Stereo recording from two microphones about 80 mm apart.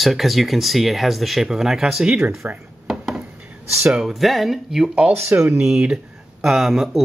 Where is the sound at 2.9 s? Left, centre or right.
Centre.